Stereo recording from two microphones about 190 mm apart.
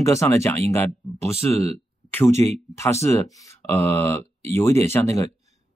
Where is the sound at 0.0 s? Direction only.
15° left (ahead or behind).